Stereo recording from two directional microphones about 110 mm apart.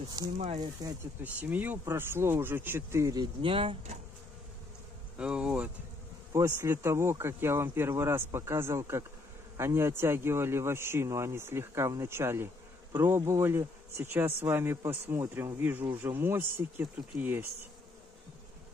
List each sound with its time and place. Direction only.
0.2 s speech: 35° right (ahead or behind)
1.2 s speech: 15° right (ahead or behind)
3.4 s speech: 55° right (ahead or behind)
5.1 s speech: 10° right (ahead or behind)
6.3 s speech: 25° right (ahead or behind)